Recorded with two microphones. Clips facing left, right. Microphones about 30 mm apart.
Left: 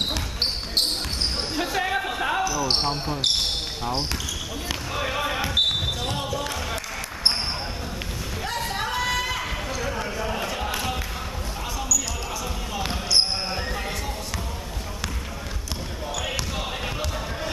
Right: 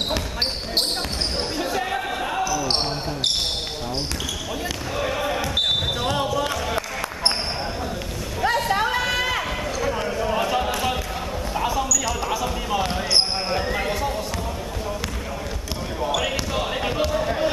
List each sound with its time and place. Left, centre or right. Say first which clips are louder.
1.6 s basketball bounce: left 2 dB; centre
2.6 s speech: even; centre
4.9 s basketball bounce: right 2 dB; centre
6.1 s basketball bounce: right 5 dB; centre
8.5 s a sound: right 3 dB; centre
9.8 s basketball bounce: right 6 dB; centre
10.3 s a sound: right 6 dB; centre
13.1 s basketball bounce: even; centre
16.3 s basketball bounce: right 4 dB; centre